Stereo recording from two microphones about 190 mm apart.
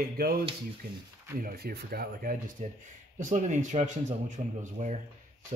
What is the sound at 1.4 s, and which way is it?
Speech, 55° right (ahead or behind).